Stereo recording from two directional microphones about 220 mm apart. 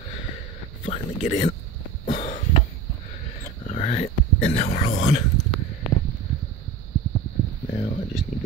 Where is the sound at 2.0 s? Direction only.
30° left (ahead or behind).